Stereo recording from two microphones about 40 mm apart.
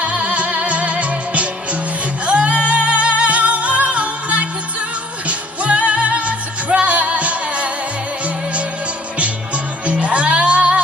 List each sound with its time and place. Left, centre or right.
0.0 s music: right
9.8 s music: right